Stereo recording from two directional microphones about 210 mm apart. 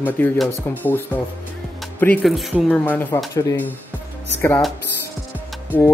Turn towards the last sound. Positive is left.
turn(degrees=10)  # may be behind; listen again after turning